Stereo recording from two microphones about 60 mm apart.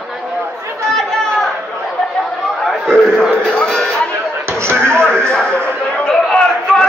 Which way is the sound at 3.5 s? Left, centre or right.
Centre.